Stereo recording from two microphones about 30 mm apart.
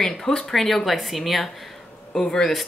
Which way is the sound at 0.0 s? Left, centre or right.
Centre.